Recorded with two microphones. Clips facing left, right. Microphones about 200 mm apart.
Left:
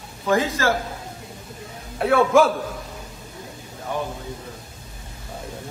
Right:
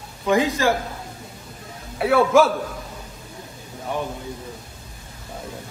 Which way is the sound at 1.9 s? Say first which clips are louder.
Even; centre (ahead or behind).